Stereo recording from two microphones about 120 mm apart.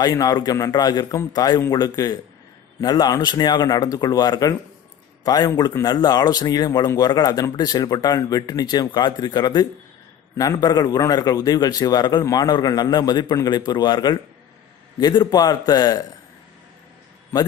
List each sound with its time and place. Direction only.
0.0 s a man's voice: 35° left (ahead or behind)